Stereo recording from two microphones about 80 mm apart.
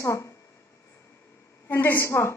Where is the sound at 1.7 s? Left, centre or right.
Left.